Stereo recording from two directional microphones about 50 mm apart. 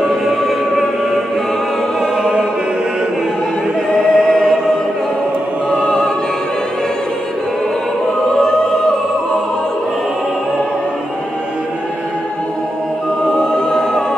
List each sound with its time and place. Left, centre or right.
0.0 s music: centre
3.9 s choir: centre
5.7 s opera: centre
8.4 s choir: centre
13.3 s choir: centre